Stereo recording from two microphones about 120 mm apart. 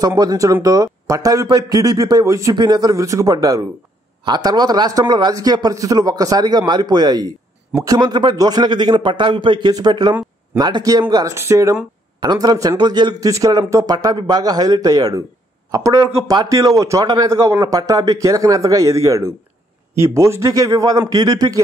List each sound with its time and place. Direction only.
0.0 s a man's voice: 30° right (ahead or behind)
11.3 s a man's voice: 25° right (ahead or behind)
12.2 s a man's voice: 35° right (ahead or behind)